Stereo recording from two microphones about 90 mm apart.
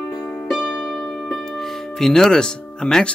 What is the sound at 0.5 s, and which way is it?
Music, centre (ahead or behind).